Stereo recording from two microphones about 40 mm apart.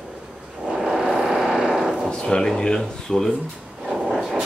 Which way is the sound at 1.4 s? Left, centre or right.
Centre.